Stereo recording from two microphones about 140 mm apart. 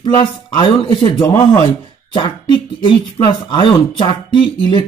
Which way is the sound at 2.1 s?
40° left (ahead or behind).